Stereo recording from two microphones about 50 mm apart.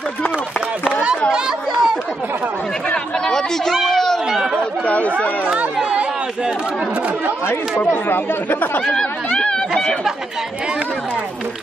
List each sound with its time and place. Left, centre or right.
1.3 s chatter: centre
2.9 s chatter: centre
3.9 s a sound: centre
4.8 s chatter: left
7.7 s speech: left
8.1 s speech: left
9.3 s a sound: centre